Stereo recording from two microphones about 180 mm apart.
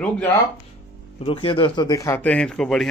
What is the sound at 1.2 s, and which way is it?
A man's voice, 30° left (ahead or behind).